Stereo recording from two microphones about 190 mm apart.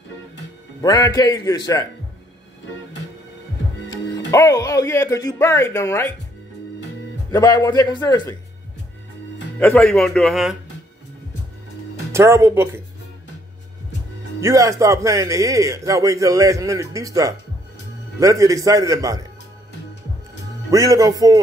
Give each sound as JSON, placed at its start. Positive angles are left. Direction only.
{"t": 0.8, "sound": "a man's voice", "side_deg": 20}
{"t": 4.3, "sound": "speech", "side_deg": 15}
{"t": 7.2, "sound": "a man's voice", "side_deg": 20}
{"t": 9.6, "sound": "speech", "side_deg": 5}
{"t": 12.1, "sound": "a man's voice", "side_deg": -15}
{"t": 14.4, "sound": "a man's voice", "side_deg": -15}
{"t": 20.7, "sound": "a man's voice", "side_deg": -20}